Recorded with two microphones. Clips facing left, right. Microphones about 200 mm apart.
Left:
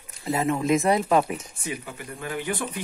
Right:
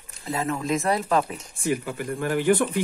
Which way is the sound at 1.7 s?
55° right (ahead or behind).